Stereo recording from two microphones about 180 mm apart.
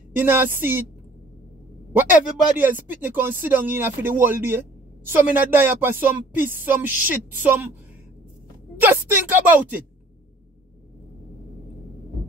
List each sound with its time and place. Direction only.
0.1 s speech: 10° right (ahead or behind)
2.5 s speech: 10° right (ahead or behind)
8.8 s speech: 10° right (ahead or behind)